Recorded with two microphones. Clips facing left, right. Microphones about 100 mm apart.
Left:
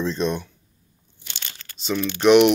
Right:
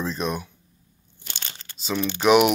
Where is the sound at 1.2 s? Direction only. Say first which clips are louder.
Right 1 dB; 35° right (ahead or behind).